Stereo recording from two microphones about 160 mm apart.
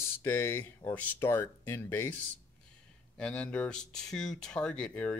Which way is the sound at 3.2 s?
5° left (ahead or behind).